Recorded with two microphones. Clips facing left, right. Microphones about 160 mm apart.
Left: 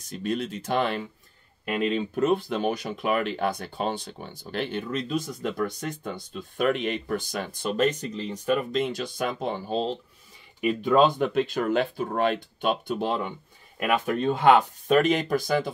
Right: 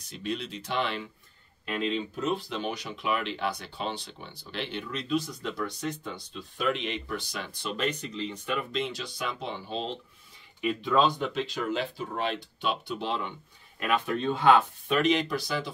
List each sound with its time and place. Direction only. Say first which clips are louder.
0.1 s speech: left 5 dB; 45° left (ahead or behind)